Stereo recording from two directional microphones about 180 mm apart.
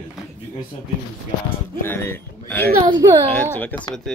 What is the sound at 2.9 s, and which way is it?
Speech, 20° right (ahead or behind).